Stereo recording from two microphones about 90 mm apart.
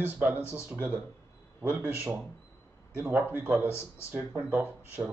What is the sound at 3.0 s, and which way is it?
Speech, 25° right (ahead or behind).